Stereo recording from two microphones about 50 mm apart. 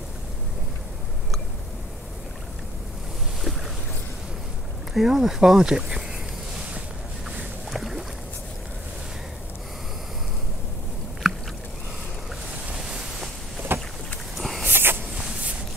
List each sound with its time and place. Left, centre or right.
4.9 s speech: centre
7.2 s boat: centre
11.3 s rowboat: centre
13.7 s vehicle: right
14.3 s a sound: centre
14.6 s a sound: right